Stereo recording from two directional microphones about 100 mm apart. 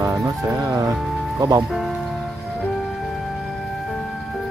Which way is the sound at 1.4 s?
45° right (ahead or behind).